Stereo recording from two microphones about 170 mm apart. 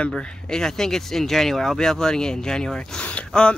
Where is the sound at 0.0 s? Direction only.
5° left (ahead or behind).